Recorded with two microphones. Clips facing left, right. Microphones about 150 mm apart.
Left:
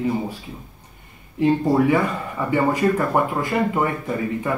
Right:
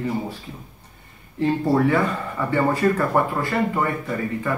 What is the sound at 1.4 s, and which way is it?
Speech, 15° left (ahead or behind).